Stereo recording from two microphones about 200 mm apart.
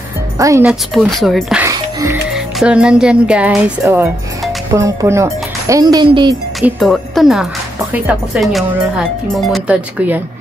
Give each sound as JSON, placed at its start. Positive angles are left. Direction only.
{"t": 0.4, "sound": "speech", "side_deg": -15}
{"t": 0.7, "sound": "speech", "side_deg": 0}
{"t": 1.6, "sound": "music", "side_deg": -15}
{"t": 2.3, "sound": "speech", "side_deg": -5}
{"t": 6.6, "sound": "speech", "side_deg": 0}